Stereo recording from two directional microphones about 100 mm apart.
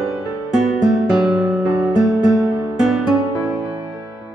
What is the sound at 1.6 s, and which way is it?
Music, 35° right (ahead or behind).